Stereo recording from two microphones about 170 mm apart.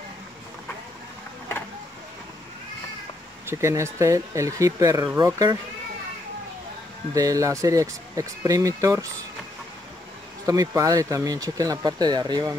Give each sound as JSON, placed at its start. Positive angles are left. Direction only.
{"t": 3.4, "sound": "speech", "side_deg": -15}
{"t": 7.2, "sound": "speech", "side_deg": -20}
{"t": 10.4, "sound": "speech", "side_deg": -20}